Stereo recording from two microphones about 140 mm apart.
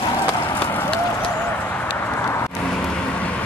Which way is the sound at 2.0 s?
15° left (ahead or behind).